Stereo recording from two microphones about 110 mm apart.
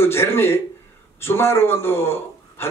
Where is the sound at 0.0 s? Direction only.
20° left (ahead or behind).